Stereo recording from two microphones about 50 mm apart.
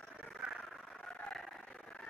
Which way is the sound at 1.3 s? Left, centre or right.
Centre.